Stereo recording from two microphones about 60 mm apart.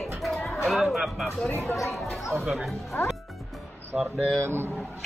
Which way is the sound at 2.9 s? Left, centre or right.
Left.